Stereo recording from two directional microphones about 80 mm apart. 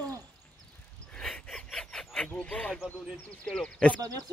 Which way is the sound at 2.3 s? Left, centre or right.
Centre.